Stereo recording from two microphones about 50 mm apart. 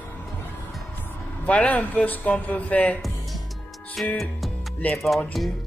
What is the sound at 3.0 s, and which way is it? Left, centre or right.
Music, centre.